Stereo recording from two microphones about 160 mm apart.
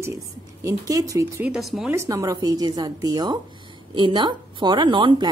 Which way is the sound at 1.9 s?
20° right (ahead or behind).